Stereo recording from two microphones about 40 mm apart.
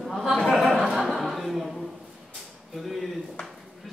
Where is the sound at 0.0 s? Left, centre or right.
Centre.